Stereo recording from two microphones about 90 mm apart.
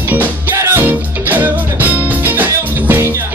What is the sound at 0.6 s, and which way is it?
Music, 35° right (ahead or behind).